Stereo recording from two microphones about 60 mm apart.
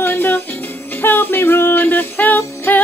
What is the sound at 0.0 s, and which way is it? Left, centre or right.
Music, left.